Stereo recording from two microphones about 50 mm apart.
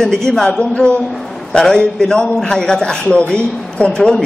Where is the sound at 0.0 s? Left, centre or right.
Centre.